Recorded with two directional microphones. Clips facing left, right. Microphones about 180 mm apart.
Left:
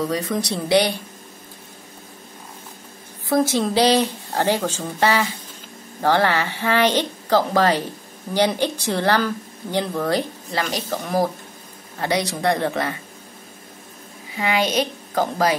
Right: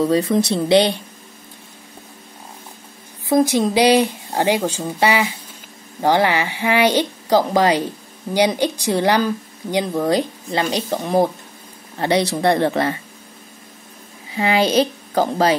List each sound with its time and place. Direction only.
0.0 s speech: 25° right (ahead or behind)
3.3 s speech: 15° right (ahead or behind); by 12.9 s 30° right (ahead or behind)
14.4 s a woman's voice: 30° right (ahead or behind)